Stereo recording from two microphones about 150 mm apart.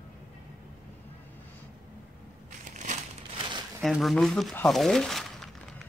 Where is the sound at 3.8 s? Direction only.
Centre (ahead or behind).